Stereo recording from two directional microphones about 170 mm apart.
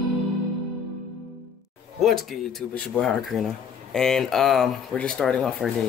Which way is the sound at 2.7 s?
Centre (ahead or behind).